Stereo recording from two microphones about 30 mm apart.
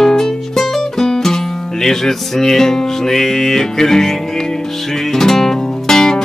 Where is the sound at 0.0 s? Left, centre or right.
Centre.